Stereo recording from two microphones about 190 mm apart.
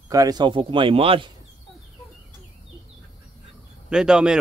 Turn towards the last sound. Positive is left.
turn(degrees=-5)  # may be behind; listen again after turning